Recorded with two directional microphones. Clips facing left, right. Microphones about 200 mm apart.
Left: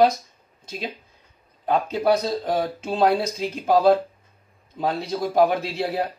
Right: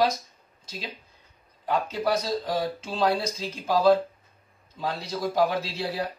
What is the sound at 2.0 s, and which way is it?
Speech, 55° left (ahead or behind).